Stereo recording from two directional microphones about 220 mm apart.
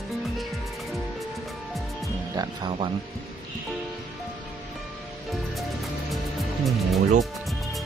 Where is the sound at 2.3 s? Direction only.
20° right (ahead or behind).